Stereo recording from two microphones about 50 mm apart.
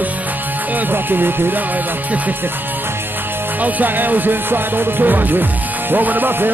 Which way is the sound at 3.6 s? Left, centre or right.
Right.